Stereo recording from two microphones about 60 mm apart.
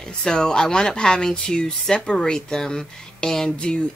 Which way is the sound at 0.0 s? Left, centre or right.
Centre.